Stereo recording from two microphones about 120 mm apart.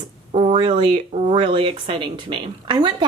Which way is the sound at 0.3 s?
60° right (ahead or behind).